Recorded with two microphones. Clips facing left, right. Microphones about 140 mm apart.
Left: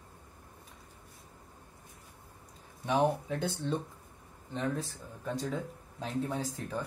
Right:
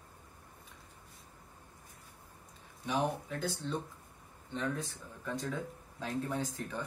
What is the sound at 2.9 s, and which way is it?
Speech, 55° left (ahead or behind).